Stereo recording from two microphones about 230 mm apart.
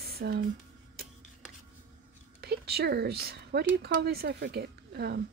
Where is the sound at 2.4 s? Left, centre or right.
Right.